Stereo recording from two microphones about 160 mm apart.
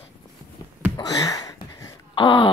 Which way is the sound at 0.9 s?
25° left (ahead or behind).